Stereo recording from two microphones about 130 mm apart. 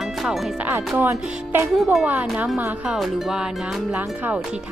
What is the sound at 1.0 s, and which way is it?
Music, 20° right (ahead or behind).